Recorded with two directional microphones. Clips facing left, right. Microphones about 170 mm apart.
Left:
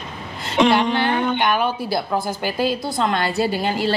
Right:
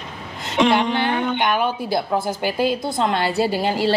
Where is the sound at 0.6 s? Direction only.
40° left (ahead or behind).